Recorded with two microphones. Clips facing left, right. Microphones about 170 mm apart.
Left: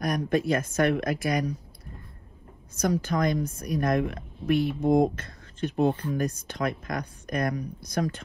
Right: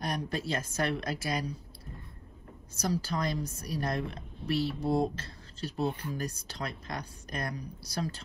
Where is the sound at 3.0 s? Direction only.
30° right (ahead or behind).